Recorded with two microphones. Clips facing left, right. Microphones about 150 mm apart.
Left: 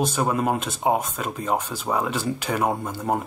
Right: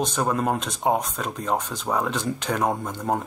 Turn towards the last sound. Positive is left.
turn(degrees=5)  # may be behind; listen again after turning